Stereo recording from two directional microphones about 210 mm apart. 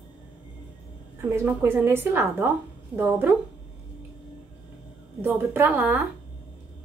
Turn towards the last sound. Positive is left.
turn(degrees=-10)  # may be behind; listen again after turning